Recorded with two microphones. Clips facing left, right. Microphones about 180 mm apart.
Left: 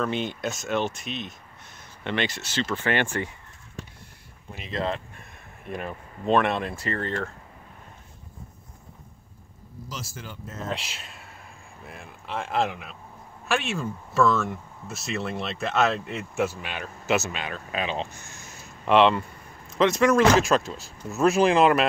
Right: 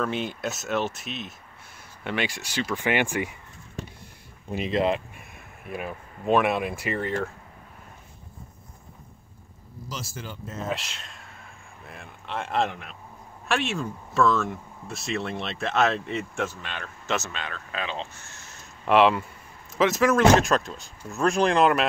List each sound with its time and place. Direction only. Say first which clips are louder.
0.0 s speech: left 1 dB; centre (ahead or behind)
4.5 s speech: right 5 dB; 15° right (ahead or behind)
9.8 s speech: right 2 dB; 30° right (ahead or behind)
10.7 s speech: even; centre (ahead or behind)
18.9 s speech: even; 5° right (ahead or behind)